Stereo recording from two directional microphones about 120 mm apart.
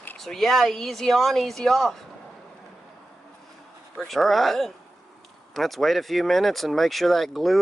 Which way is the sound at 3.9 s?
Centre (ahead or behind).